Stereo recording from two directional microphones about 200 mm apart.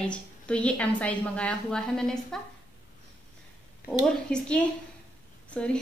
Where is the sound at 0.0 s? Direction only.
5° left (ahead or behind).